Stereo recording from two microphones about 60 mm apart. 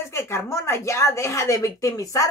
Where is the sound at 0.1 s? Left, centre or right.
Left.